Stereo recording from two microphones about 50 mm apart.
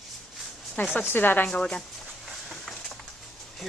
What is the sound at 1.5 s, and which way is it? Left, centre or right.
Speech, centre.